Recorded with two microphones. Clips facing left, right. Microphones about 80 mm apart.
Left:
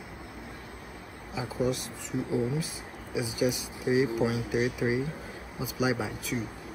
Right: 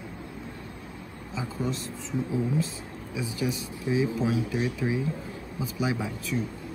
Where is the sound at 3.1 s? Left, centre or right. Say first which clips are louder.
Left 2 dB; centre.